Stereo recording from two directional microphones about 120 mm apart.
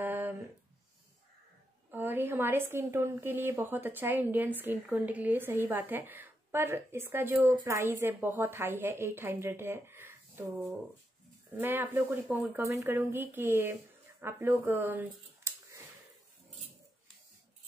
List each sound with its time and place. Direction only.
0.0 s a sound: 15° right (ahead or behind)
1.9 s a woman's voice: 15° right (ahead or behind)
11.5 s a woman's voice: 15° right (ahead or behind)